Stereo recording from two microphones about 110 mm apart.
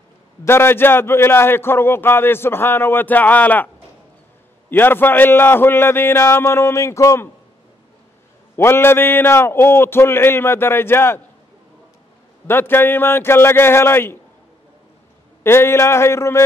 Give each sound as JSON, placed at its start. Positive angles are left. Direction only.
{"t": 0.5, "sound": "a man's voice", "side_deg": 20}
{"t": 8.5, "sound": "a man's voice", "side_deg": 20}
{"t": 12.4, "sound": "a man's voice", "side_deg": 20}
{"t": 15.4, "sound": "a man's voice", "side_deg": 20}